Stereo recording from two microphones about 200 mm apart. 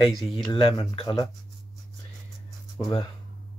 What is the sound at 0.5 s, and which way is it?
Speech, 25° left (ahead or behind).